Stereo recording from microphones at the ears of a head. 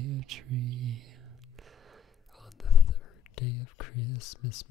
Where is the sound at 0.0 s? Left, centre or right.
Right.